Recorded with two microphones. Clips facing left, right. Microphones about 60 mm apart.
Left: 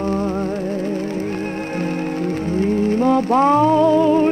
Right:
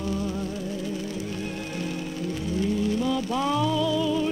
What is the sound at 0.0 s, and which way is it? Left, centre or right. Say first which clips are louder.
Music: left 9 dB; left.